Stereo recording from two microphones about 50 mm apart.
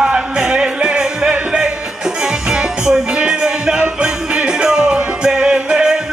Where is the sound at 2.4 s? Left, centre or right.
Centre.